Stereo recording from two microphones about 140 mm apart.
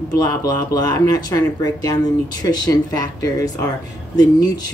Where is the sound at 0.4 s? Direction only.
25° left (ahead or behind).